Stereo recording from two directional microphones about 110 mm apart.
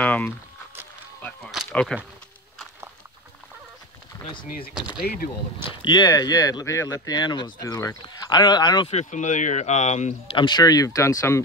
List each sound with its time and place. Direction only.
0.0 s a sound: 15° left (ahead or behind)
1.7 s speech: 10° left (ahead or behind)
5.6 s speech: 50° left (ahead or behind)
7.6 s speech: 30° left (ahead or behind)
8.8 s speech: 90° left
10.3 s speech: 45° left (ahead or behind); by 11.4 s 30° left (ahead or behind)